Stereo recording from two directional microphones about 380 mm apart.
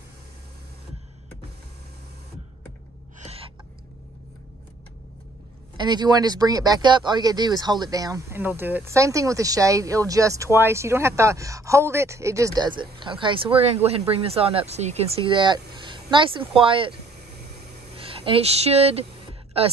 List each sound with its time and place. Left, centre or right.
3.3 s gasp: centre
5.8 s speech: centre
17.9 s speech: centre